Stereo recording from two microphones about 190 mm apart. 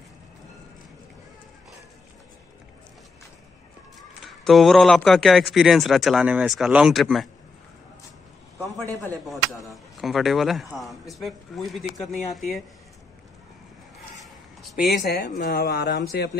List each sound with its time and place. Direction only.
4.2 s a man's voice: centre (ahead or behind)
9.2 s a man's voice: centre (ahead or behind)
14.1 s a sound: centre (ahead or behind)
15.0 s speech: 50° left (ahead or behind)